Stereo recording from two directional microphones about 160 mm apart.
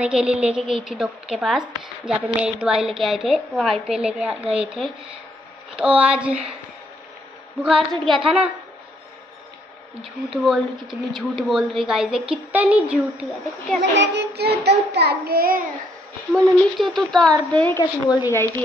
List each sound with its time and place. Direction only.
0.0 s a woman's voice: 5° right (ahead or behind)
7.6 s a woman's voice: centre (ahead or behind)
10.0 s a woman's voice: centre (ahead or behind)
13.9 s child singing: 90° right; by 15.6 s 65° right (ahead or behind)
16.3 s a woman's voice: centre (ahead or behind)